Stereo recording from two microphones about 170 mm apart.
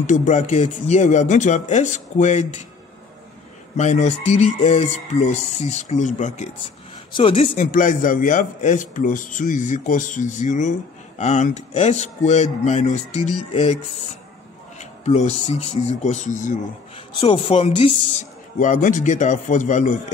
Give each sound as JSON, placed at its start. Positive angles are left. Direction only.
{"t": 0.0, "sound": "a man's voice", "side_deg": 45}
{"t": 3.7, "sound": "speech", "side_deg": 40}
{"t": 7.1, "sound": "speech", "side_deg": 30}
{"t": 7.4, "sound": "a man's voice", "side_deg": 50}
{"t": 14.8, "sound": "speech", "side_deg": 40}
{"t": 16.9, "sound": "speech", "side_deg": 35}
{"t": 18.6, "sound": "a man's voice", "side_deg": 50}